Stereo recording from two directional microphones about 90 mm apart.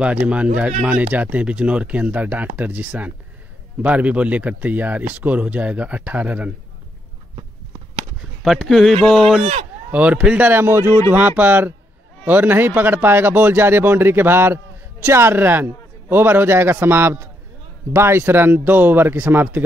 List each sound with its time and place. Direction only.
0.0 s speech: 15° right (ahead or behind)
8.4 s speech: centre (ahead or behind)
9.8 s speech: 15° right (ahead or behind)